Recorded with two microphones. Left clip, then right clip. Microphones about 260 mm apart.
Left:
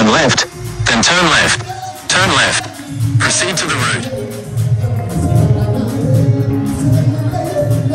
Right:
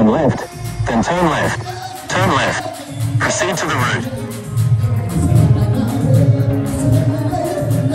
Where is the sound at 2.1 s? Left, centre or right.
Right.